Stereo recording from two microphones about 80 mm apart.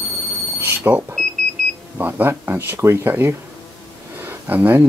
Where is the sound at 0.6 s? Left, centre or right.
Right.